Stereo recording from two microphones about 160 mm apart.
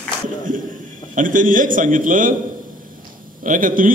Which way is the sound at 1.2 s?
55° right (ahead or behind).